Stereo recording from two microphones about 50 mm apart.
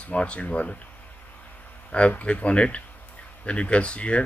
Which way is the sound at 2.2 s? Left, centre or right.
Left.